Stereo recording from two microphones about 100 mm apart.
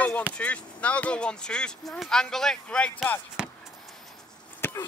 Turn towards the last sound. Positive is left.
turn(degrees=25)  # may be behind; listen again after turning